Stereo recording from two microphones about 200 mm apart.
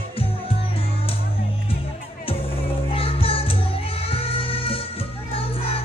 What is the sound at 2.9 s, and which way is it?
Music, 30° left (ahead or behind).